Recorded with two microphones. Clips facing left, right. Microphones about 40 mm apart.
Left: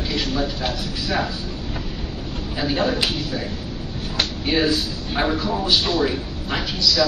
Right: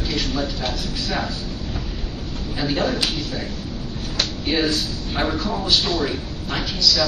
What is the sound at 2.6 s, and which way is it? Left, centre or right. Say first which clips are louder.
Speech: left 1 dB; centre.